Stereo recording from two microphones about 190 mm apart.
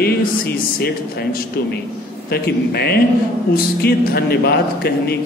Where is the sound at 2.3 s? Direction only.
60° left (ahead or behind).